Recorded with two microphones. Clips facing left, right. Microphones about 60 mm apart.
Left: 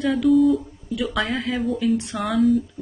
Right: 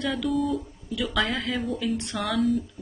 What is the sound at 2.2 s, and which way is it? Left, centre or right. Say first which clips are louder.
Speech: left 5 dB; centre.